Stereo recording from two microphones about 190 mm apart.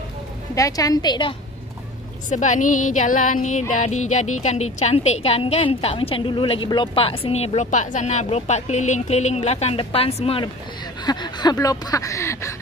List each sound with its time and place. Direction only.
0.6 s a woman's voice: 20° left (ahead or behind)
2.2 s a woman's voice: 40° left (ahead or behind); by 12.5 s 15° left (ahead or behind)